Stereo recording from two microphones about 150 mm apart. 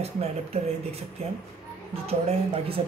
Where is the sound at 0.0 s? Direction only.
45° right (ahead or behind).